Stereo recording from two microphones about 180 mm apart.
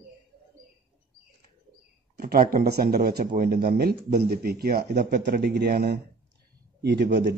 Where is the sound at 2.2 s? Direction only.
55° right (ahead or behind).